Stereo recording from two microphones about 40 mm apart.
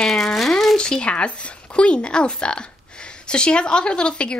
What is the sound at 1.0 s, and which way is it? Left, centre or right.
A woman's voice, left.